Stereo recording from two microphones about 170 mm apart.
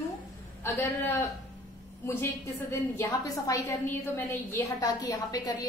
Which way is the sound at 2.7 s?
20° left (ahead or behind).